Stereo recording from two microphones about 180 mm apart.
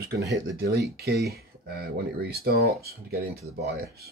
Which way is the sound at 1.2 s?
60° right (ahead or behind).